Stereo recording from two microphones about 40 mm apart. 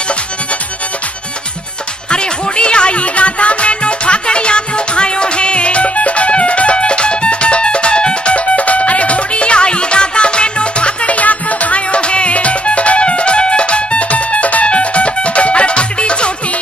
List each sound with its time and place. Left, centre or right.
2.0 s music: left